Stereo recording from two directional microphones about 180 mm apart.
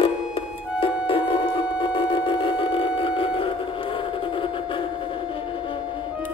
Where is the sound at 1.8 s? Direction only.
25° left (ahead or behind).